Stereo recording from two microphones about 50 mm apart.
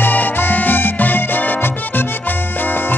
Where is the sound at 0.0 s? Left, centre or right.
Left.